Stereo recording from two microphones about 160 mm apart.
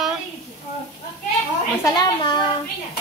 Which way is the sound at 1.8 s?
25° left (ahead or behind).